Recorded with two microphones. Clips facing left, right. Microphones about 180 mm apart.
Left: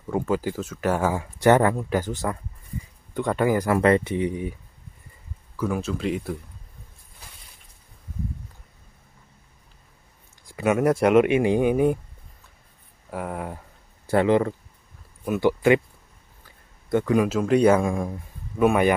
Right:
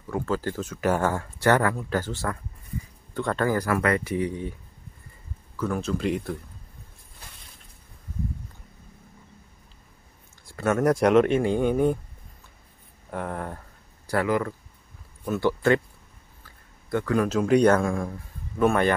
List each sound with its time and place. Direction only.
0.0 s speech: 20° left (ahead or behind)
5.6 s speech: 5° left (ahead or behind)
10.4 s speech: 15° left (ahead or behind)
13.1 s speech: 5° left (ahead or behind)
14.0 s speech: 25° left (ahead or behind)
15.2 s speech: 15° left (ahead or behind)
16.4 s a sound: 20° left (ahead or behind)
17.4 s speech: centre (ahead or behind)
17.8 s speech: 20° left (ahead or behind)